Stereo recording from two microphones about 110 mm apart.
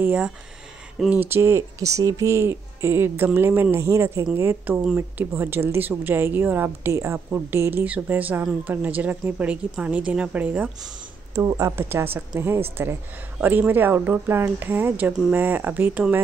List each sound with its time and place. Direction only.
0.0 s speech: 15° right (ahead or behind)
1.2 s a woman's voice: 20° right (ahead or behind)
11.3 s a woman's voice: 30° right (ahead or behind); by 16.2 s 15° right (ahead or behind)